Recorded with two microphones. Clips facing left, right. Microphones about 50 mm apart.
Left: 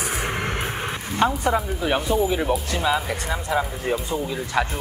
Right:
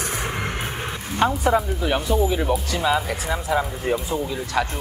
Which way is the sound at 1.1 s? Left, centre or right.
Centre.